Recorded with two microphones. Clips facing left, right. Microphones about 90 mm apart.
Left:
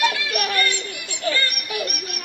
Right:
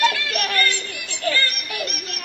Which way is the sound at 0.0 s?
20° left (ahead or behind).